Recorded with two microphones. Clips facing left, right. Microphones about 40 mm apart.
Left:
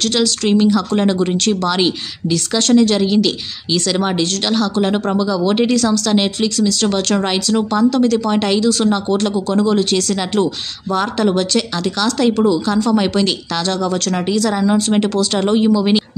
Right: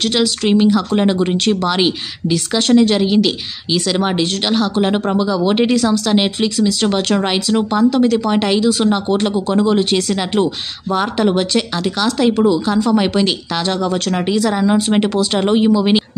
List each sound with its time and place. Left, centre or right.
0.0 s speech: centre